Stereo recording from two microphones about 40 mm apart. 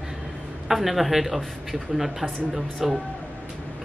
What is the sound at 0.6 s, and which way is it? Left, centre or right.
Speech, centre.